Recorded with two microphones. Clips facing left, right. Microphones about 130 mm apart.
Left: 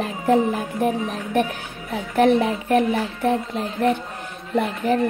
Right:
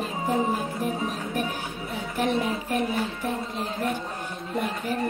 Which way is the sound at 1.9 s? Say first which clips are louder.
Left 9 dB; 70° left (ahead or behind).